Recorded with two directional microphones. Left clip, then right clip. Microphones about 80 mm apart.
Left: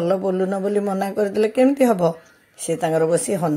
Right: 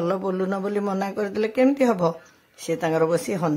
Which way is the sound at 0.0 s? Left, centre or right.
Centre.